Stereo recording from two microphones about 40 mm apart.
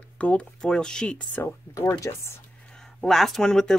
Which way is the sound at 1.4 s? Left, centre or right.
Left.